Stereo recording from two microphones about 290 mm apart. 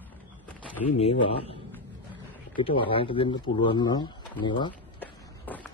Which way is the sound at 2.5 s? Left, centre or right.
Centre.